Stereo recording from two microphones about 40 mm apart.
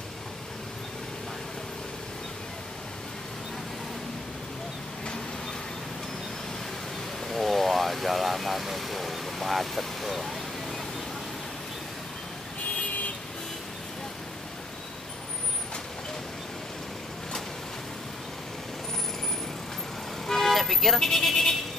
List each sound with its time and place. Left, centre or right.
7.2 s vehicle: centre
12.7 s vehicle: left
20.2 s vehicle: centre